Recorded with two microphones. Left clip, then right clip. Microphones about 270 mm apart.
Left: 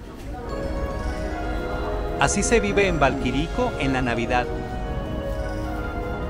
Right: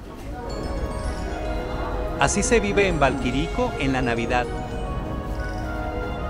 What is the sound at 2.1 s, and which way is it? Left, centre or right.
A man's voice, centre.